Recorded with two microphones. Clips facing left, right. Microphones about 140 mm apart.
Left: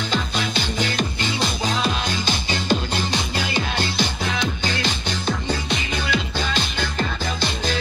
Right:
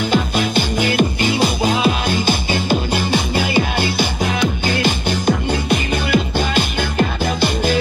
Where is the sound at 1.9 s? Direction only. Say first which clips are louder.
Right 7 dB; 55° right (ahead or behind).